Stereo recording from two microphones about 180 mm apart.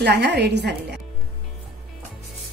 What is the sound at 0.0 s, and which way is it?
Speech, 70° right (ahead or behind).